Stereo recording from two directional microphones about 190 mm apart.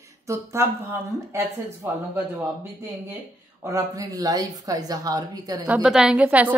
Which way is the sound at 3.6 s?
15° right (ahead or behind).